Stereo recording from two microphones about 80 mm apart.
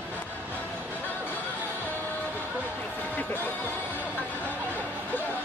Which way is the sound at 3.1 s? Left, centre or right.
Left.